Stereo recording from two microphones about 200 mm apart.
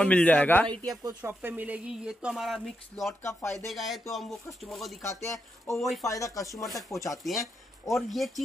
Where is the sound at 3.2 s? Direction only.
15° left (ahead or behind).